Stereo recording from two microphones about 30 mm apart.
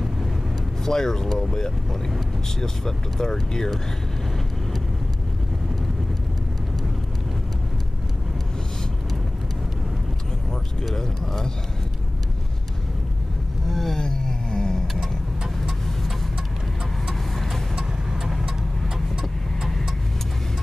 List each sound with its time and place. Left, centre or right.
0.8 s speech: centre
11.0 s speech: centre
13.7 s vehicle: centre
13.9 s vehicle: centre
15.0 s vehicle: centre
17.1 s vehicle: centre